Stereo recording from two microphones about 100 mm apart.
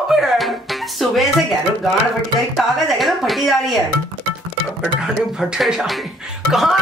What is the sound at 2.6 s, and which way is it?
Speech, centre (ahead or behind).